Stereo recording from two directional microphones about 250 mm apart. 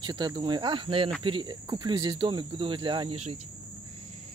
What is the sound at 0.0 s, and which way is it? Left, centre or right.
Speech, centre.